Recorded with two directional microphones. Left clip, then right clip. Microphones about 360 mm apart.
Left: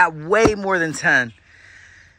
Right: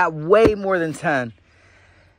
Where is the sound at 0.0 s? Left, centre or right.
Centre.